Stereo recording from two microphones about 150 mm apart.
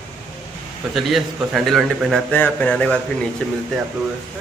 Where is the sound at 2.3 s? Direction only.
10° left (ahead or behind).